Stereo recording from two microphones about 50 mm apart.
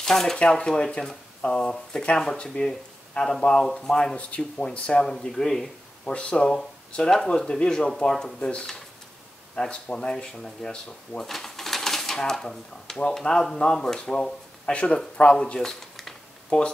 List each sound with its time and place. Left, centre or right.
0.0 s speech: centre
5.0 s speech: centre
6.0 s speech: left
9.6 s speech: left
14.7 s speech: left
15.6 s a sound: centre
16.4 s speech: left